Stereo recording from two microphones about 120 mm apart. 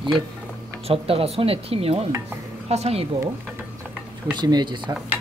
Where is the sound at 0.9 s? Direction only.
55° right (ahead or behind).